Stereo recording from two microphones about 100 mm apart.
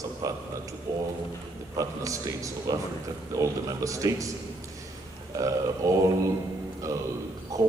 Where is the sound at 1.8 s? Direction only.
35° right (ahead or behind).